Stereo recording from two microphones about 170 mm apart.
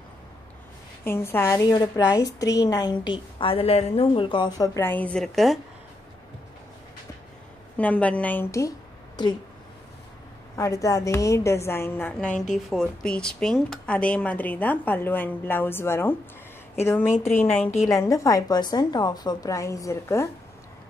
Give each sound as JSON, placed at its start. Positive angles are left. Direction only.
{"t": 1.0, "sound": "a woman's voice", "side_deg": 15}
{"t": 7.7, "sound": "a woman's voice", "side_deg": 10}
{"t": 10.5, "sound": "a woman's voice", "side_deg": 20}